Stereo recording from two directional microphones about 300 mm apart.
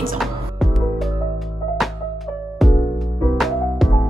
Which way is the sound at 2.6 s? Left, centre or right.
Centre.